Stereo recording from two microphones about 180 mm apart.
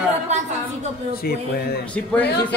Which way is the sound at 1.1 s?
55° left (ahead or behind).